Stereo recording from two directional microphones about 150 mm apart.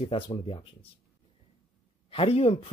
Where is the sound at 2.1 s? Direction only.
40° left (ahead or behind).